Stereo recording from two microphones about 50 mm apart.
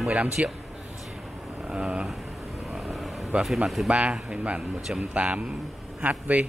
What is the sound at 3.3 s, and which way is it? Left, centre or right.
Speech, right.